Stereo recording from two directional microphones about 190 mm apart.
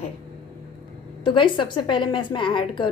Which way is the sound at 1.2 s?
25° left (ahead or behind).